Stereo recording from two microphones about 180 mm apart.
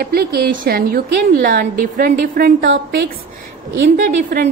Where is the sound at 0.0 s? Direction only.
60° right (ahead or behind).